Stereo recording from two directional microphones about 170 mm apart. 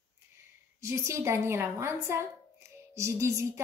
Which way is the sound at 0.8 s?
15° right (ahead or behind).